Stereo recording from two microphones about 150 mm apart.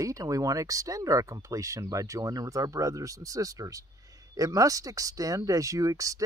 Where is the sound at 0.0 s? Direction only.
20° right (ahead or behind).